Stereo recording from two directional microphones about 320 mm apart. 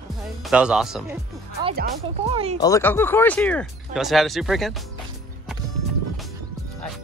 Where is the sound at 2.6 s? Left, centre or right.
Centre.